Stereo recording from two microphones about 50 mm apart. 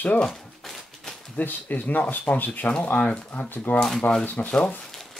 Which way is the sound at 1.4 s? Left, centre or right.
Left.